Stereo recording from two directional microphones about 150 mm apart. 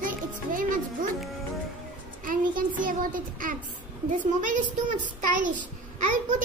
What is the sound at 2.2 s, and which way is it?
Child singing, 65° right (ahead or behind).